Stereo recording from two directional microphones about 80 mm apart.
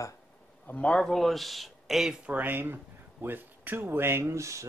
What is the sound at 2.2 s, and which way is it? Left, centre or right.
Speech, right.